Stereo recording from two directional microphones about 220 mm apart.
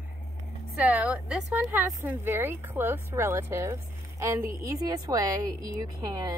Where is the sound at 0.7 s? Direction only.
5° right (ahead or behind).